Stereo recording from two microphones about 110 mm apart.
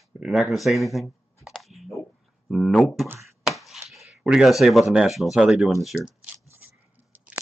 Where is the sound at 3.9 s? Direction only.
Centre (ahead or behind).